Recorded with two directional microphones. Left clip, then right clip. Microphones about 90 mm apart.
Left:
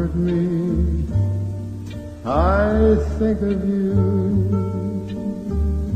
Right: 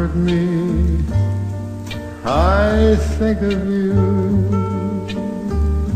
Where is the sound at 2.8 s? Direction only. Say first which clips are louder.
Right 1 dB; 45° left (ahead or behind).